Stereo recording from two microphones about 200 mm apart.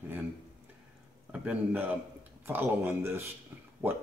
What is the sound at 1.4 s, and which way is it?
Speech, 10° right (ahead or behind).